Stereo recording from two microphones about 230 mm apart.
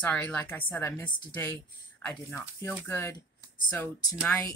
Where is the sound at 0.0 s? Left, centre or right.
Centre.